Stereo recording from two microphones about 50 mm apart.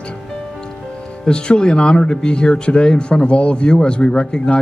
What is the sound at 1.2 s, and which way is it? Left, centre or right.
Speech, centre.